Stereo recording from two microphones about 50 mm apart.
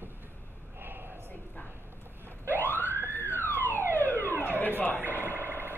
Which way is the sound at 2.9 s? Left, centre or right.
Right.